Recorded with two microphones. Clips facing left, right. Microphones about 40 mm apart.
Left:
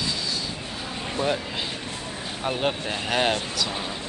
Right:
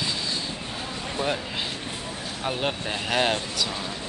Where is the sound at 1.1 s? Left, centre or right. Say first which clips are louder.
Left 2 dB; centre.